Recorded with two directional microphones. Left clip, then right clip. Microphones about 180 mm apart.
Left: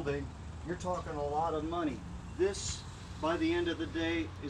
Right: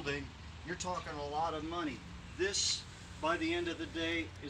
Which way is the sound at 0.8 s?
25° right (ahead or behind).